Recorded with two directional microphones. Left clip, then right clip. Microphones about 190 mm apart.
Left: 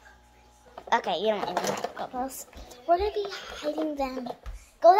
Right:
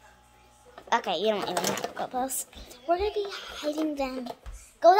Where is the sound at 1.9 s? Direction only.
30° right (ahead or behind).